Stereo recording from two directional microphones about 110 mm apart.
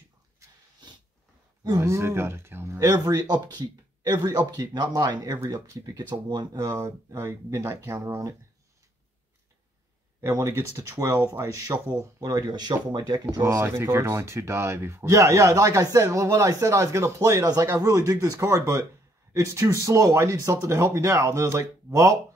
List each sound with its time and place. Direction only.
1.8 s speech: 25° right (ahead or behind); by 5.4 s 40° right (ahead or behind)
5.4 s speech: 25° right (ahead or behind)
5.9 s speech: 40° right (ahead or behind)
7.2 s speech: 25° right (ahead or behind)
10.2 s speech: 25° right (ahead or behind); by 13.2 s 40° right (ahead or behind)
13.3 s speech: 25° right (ahead or behind)